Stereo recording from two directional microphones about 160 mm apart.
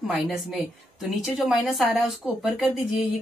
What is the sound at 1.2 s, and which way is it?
A woman's voice, centre (ahead or behind).